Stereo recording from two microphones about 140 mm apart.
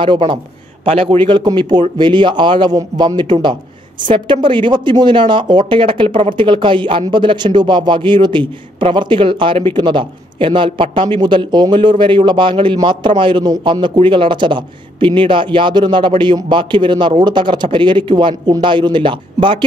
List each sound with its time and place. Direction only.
0.0 s speech: 35° right (ahead or behind)